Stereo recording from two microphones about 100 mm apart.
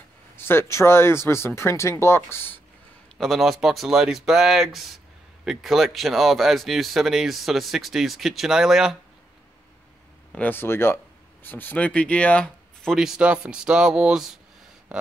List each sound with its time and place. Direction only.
0.4 s speech: 25° left (ahead or behind)
3.2 s speech: centre (ahead or behind)
10.3 s speech: 20° left (ahead or behind)
12.9 s speech: 5° right (ahead or behind)
14.9 s a sound: 10° right (ahead or behind)